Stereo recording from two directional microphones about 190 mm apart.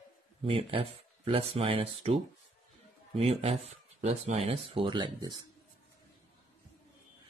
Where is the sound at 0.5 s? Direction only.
30° right (ahead or behind).